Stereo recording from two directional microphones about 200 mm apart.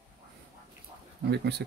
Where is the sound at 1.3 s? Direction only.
55° right (ahead or behind).